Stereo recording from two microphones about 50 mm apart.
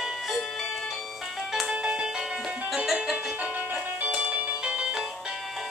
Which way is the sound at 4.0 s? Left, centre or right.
Right.